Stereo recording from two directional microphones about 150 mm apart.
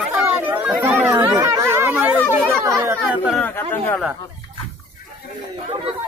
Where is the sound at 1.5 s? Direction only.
15° right (ahead or behind).